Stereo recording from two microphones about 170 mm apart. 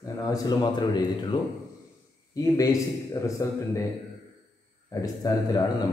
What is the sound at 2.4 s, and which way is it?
Speech, 20° left (ahead or behind).